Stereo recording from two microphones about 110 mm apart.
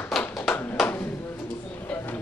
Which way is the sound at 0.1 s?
Centre (ahead or behind).